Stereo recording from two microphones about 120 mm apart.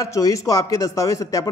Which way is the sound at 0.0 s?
25° left (ahead or behind).